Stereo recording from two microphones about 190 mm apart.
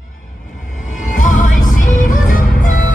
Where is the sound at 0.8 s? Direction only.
40° left (ahead or behind).